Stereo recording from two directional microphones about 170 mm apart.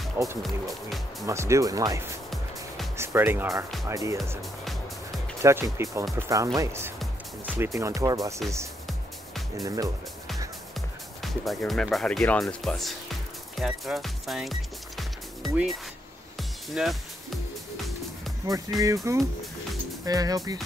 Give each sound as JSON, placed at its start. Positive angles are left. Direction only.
{"t": 0.2, "sound": "speech", "side_deg": -15}
{"t": 5.4, "sound": "speech", "side_deg": -15}
{"t": 9.6, "sound": "speech", "side_deg": -20}
{"t": 11.2, "sound": "speech", "side_deg": 0}
{"t": 16.3, "sound": "music", "side_deg": 0}
{"t": 18.5, "sound": "speech", "side_deg": -20}
{"t": 20.1, "sound": "speech", "side_deg": -20}